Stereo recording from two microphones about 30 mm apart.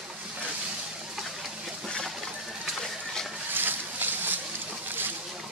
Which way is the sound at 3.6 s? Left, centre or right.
Right.